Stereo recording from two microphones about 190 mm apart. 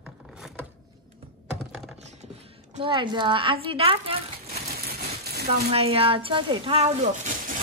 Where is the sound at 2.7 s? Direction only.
25° right (ahead or behind).